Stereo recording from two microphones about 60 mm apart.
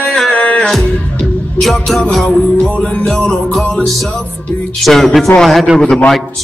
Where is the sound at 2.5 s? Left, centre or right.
Centre.